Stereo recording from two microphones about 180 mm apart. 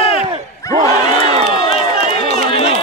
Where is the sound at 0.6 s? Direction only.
15° left (ahead or behind).